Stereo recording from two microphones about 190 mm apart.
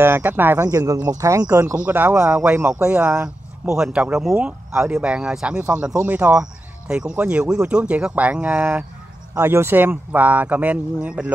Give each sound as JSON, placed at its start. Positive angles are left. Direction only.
{"t": 0.0, "sound": "speech", "side_deg": -10}